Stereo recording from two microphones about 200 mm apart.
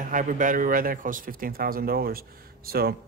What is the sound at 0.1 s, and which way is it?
Speech, 40° right (ahead or behind).